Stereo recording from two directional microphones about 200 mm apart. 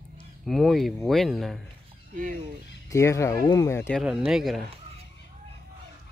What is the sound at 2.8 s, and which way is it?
Speech, 15° left (ahead or behind).